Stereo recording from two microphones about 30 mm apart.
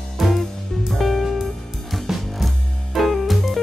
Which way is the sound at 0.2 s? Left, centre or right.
Centre.